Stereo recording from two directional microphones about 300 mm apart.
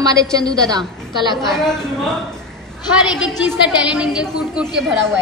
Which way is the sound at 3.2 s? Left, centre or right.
Centre.